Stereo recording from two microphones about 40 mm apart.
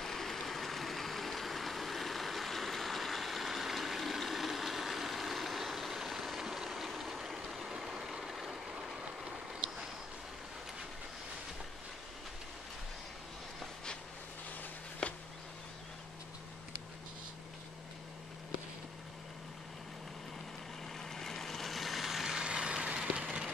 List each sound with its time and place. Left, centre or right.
0.0 s a sound: centre
7.4 s vehicle: centre
7.7 s vehicle: centre
15.0 s a sound: left
21.0 s vehicle: centre
22.4 s vehicle: right